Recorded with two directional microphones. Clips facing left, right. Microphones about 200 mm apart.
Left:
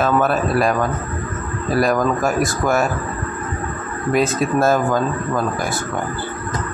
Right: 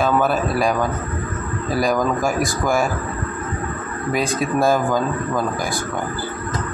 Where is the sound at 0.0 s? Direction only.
Centre (ahead or behind).